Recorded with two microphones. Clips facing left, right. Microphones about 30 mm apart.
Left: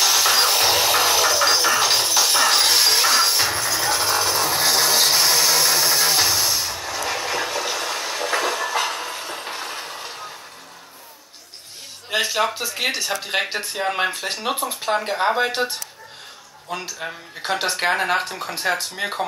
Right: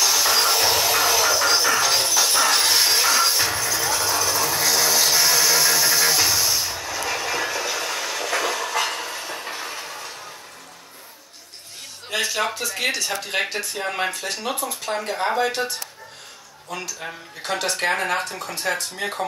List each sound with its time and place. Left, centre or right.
0.0 s a sound: left
1.6 s music: left
3.8 s a sound: left
5.3 s steam: left
7.0 s vehicle: left
7.4 s train: left
8.6 s train: left
12.1 s a sound: centre
12.5 s speech: centre
13.5 s speech: left